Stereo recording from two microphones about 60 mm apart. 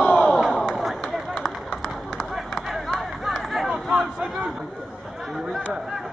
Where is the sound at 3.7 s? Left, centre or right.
Centre.